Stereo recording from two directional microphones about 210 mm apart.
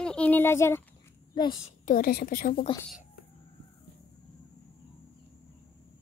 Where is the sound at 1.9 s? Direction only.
45° left (ahead or behind).